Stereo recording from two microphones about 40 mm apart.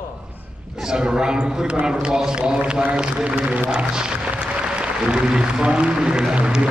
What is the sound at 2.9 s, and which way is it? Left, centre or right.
Speech, right.